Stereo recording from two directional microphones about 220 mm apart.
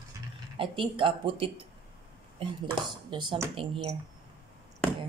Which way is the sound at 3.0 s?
20° right (ahead or behind).